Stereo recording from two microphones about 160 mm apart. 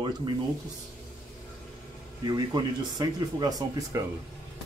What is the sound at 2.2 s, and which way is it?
Speech, 25° right (ahead or behind).